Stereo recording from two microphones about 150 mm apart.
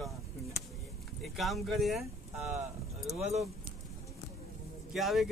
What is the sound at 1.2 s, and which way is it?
Speech, centre (ahead or behind).